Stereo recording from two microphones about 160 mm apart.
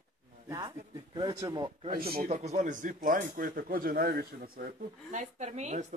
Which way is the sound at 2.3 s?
45° right (ahead or behind).